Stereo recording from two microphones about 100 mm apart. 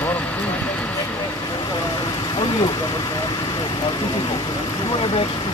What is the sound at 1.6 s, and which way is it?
Speech, 45° left (ahead or behind).